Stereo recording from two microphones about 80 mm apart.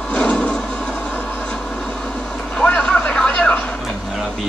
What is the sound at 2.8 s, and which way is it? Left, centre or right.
Vehicle, centre.